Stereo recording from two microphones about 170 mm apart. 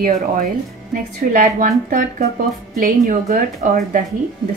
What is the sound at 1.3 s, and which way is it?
A woman's voice, 55° right (ahead or behind).